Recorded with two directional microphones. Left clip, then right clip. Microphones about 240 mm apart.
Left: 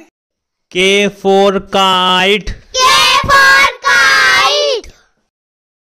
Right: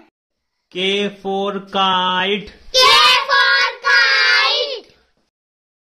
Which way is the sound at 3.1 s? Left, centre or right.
Left.